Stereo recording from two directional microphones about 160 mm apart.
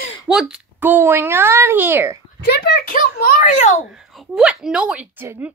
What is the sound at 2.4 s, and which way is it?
A child's voice, 85° left.